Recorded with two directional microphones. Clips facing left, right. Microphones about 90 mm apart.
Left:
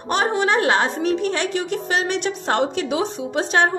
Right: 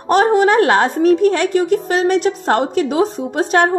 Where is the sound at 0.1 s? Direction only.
45° right (ahead or behind).